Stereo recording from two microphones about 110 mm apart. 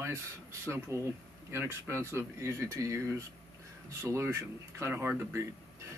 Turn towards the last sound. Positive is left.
turn(degrees=-25)  # may be behind; listen again after turning